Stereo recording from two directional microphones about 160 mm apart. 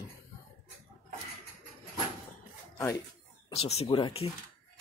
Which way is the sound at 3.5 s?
40° left (ahead or behind).